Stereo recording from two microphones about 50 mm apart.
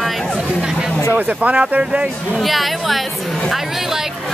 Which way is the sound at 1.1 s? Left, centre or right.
Right.